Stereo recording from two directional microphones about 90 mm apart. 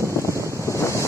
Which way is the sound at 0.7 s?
35° left (ahead or behind).